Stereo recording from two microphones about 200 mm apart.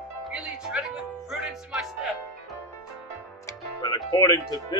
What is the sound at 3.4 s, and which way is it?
Music, 20° left (ahead or behind).